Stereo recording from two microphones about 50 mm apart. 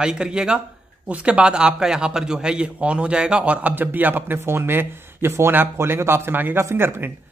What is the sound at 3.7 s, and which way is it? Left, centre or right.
Speech, right.